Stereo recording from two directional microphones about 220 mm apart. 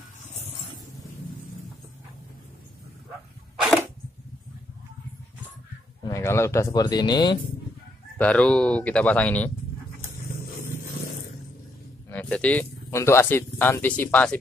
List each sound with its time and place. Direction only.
6.0 s speech: 10° left (ahead or behind)
8.2 s speech: 5° left (ahead or behind)
12.1 s speech: 5° left (ahead or behind)